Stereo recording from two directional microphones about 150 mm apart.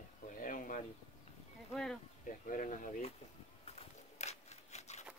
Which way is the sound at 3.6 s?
45° left (ahead or behind).